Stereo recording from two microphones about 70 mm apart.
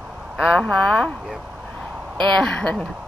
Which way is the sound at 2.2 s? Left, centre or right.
Centre.